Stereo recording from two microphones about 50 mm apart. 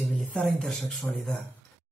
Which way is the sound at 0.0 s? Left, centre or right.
Left.